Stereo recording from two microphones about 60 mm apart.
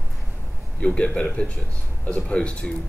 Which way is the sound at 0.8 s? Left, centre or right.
Centre.